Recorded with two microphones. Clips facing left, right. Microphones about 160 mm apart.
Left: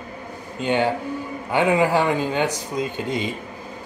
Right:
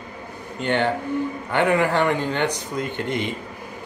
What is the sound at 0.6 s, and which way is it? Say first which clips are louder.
Speech: left 1 dB; 10° left (ahead or behind).